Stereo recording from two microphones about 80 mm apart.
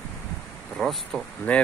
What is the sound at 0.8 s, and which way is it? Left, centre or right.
Speech, centre.